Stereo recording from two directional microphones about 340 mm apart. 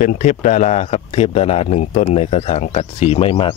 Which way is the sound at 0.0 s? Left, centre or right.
Left.